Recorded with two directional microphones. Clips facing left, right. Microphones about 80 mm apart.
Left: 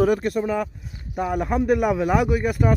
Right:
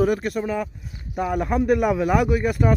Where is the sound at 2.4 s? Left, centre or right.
Centre.